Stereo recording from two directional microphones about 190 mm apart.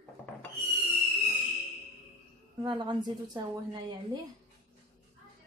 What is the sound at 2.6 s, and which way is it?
Dishes, 25° right (ahead or behind).